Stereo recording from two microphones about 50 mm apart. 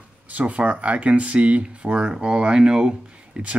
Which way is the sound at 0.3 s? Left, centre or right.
Right.